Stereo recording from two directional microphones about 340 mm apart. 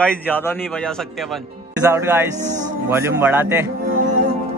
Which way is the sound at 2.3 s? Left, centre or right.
Right.